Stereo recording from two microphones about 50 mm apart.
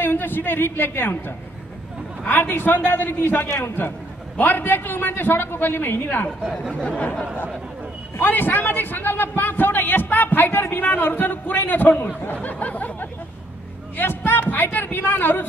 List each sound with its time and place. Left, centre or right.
0.0 s a woman's voice: left
8.2 s a man's voice: left
12.4 s a sound: left
13.9 s speech: left